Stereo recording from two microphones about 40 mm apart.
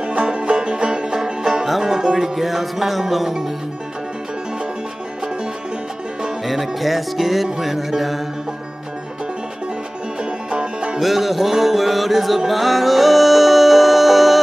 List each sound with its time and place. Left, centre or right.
0.0 s music: right; by 3.3 s centre
6.4 s music: centre
10.5 s music: right
11.0 s music: centre